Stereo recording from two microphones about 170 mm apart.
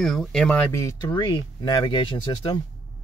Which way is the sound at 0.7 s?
15° left (ahead or behind).